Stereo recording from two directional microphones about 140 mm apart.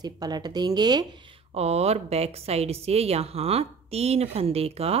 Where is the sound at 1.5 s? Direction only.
45° right (ahead or behind).